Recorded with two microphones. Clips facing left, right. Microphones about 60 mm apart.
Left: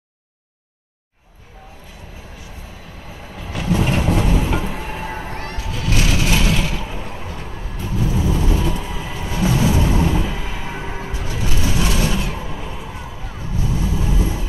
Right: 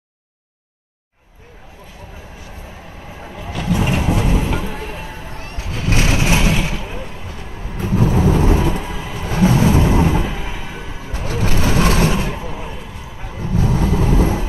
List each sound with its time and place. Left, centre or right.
3.5 s vehicle: centre
5.0 s a sound: left
5.3 s music: left
5.7 s vehicle: right
7.8 s vehicle: right
8.5 s music: right
9.1 s vehicle: right
10.1 s music: centre
11.1 s vehicle: right
12.1 s a sound: right
13.4 s vehicle: right